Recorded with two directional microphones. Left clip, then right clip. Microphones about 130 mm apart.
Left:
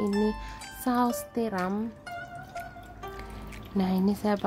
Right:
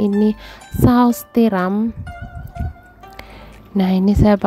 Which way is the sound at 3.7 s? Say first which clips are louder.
Right 11 dB; 65° right (ahead or behind).